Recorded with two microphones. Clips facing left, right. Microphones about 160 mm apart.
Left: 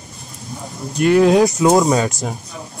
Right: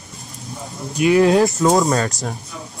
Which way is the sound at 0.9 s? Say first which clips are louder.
Left 1 dB; centre (ahead or behind).